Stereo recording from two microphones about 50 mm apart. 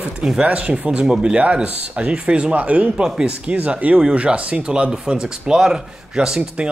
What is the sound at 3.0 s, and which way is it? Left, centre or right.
Speech, centre.